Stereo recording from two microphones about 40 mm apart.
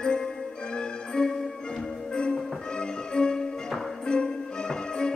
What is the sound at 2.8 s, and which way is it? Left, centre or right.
Music, left.